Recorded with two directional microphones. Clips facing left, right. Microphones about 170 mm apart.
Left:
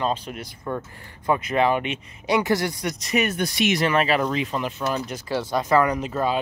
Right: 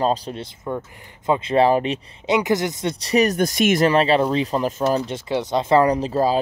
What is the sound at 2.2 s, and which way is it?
Speech, 20° right (ahead or behind).